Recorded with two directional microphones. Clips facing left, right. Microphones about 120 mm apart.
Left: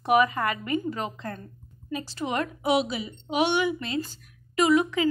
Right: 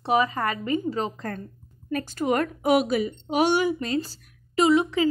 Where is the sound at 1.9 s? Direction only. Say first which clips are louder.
Right 5 dB; 50° right (ahead or behind).